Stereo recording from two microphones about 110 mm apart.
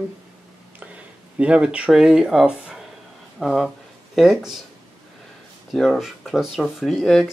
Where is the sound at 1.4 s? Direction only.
10° right (ahead or behind).